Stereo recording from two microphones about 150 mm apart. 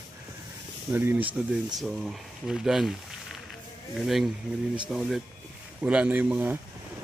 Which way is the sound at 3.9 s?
Centre (ahead or behind).